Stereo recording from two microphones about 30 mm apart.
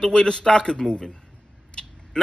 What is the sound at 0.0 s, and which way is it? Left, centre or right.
A man's voice, left.